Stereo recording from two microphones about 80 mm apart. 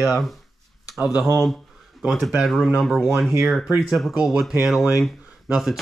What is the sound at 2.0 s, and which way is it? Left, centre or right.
Speech, centre.